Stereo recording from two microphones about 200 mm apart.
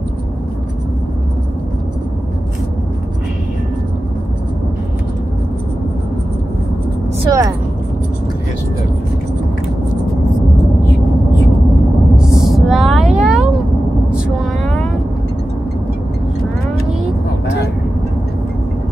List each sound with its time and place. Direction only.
7.2 s vehicle: 15° right (ahead or behind)
12.2 s a sound: centre (ahead or behind)
14.1 s vehicle: centre (ahead or behind)